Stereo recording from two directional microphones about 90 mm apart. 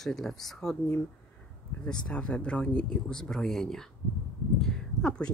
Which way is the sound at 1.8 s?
10° left (ahead or behind).